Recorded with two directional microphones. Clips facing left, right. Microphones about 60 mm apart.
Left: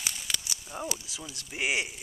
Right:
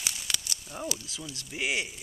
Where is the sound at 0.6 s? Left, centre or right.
Centre.